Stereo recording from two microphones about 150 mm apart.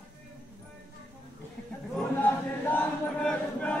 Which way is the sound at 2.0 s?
10° left (ahead or behind).